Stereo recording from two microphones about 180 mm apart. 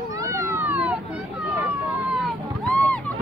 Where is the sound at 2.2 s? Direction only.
5° left (ahead or behind).